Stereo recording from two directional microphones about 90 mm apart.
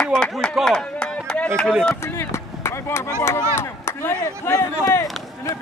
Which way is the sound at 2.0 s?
25° left (ahead or behind).